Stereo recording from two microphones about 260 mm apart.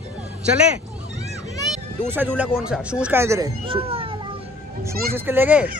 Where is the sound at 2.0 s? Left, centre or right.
Centre.